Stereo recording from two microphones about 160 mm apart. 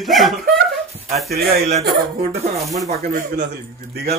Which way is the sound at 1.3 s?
70° right (ahead or behind).